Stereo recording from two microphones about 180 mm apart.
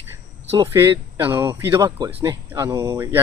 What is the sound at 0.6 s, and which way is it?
Speech, 15° right (ahead or behind).